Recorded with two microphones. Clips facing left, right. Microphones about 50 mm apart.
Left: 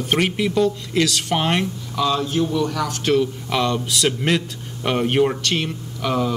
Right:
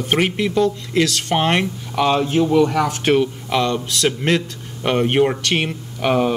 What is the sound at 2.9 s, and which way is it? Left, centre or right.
Speech, right.